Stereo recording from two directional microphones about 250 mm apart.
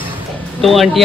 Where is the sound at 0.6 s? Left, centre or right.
Centre.